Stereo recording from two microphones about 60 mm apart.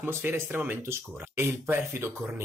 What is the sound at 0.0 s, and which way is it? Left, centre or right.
Speech, right.